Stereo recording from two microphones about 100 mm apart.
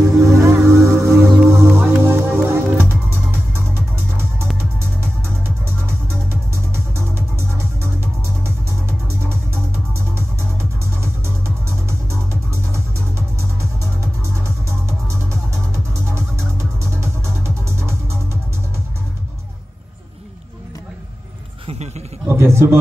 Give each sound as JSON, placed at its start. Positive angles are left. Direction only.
{"t": 0.0, "sound": "music", "side_deg": -30}
{"t": 6.5, "sound": "music", "side_deg": -25}
{"t": 9.9, "sound": "music", "side_deg": -25}
{"t": 14.2, "sound": "music", "side_deg": -30}
{"t": 22.3, "sound": "a sound", "side_deg": -25}